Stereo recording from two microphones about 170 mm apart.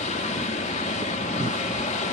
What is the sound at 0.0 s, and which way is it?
Vehicle, 45° left (ahead or behind).